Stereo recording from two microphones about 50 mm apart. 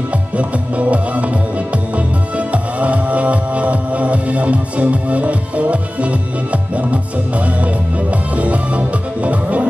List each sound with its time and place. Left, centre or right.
0.4 s music: right
2.3 s music: right